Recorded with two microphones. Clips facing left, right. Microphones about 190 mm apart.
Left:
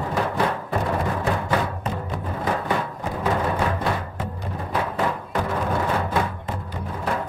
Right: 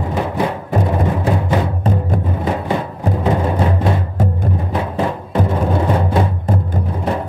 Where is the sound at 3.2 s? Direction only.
25° right (ahead or behind).